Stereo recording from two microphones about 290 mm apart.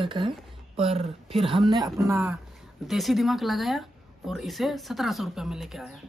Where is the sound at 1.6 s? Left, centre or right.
Centre.